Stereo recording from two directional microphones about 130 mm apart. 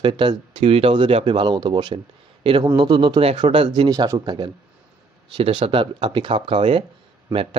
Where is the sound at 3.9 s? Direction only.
25° right (ahead or behind).